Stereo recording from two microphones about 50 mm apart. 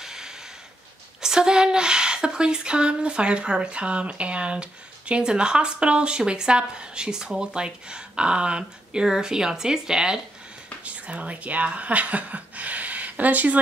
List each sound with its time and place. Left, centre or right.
0.0 s a sound: centre
1.2 s speech: centre
10.8 s speech: right